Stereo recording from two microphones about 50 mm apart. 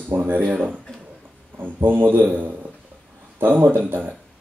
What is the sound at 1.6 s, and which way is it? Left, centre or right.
A man's voice, right.